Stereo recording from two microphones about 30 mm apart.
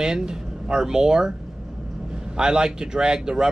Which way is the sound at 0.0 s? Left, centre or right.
Right.